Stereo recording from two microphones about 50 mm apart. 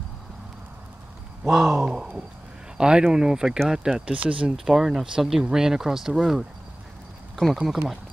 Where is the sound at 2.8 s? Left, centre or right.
Centre.